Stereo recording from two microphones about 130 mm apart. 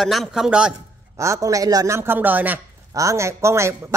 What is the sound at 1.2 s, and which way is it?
Speech, 25° right (ahead or behind).